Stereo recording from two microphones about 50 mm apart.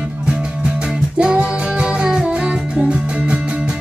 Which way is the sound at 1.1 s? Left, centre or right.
Right.